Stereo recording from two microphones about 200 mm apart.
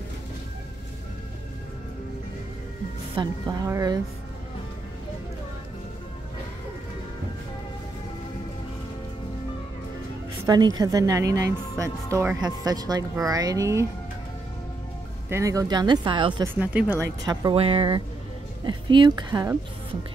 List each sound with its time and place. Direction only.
3.2 s a woman's voice: 20° right (ahead or behind)
10.4 s speech: 20° right (ahead or behind)
15.2 s a woman's voice: 15° right (ahead or behind)
16.5 s a woman's voice: 10° right (ahead or behind)